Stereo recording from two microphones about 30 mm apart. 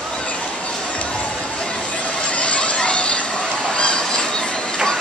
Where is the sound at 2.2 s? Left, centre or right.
Left.